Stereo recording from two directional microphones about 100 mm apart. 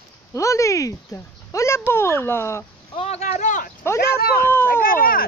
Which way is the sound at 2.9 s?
90° left.